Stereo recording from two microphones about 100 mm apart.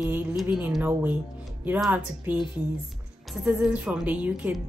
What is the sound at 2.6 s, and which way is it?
Speech, 15° right (ahead or behind).